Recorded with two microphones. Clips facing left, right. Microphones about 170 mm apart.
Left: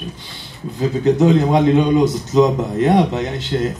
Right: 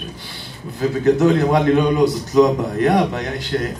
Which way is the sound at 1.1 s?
20° left (ahead or behind).